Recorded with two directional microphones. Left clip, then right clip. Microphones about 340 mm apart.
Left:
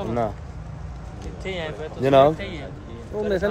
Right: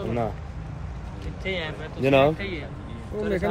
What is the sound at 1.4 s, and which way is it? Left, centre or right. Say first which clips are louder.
A man's voice: even; centre.